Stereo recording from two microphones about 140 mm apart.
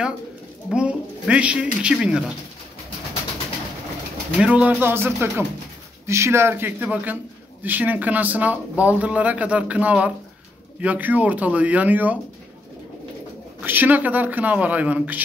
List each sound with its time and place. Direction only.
0.7 s speech: 5° right (ahead or behind)
4.4 s speech: 5° right (ahead or behind)
13.6 s speech: 15° right (ahead or behind)